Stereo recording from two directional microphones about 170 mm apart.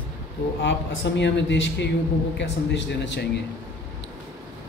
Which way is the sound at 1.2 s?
90° left.